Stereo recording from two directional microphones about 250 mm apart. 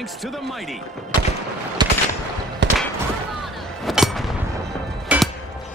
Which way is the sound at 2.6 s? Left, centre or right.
Right.